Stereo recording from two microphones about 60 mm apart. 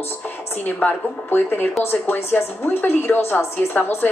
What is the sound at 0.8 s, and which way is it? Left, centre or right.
A woman's voice, left.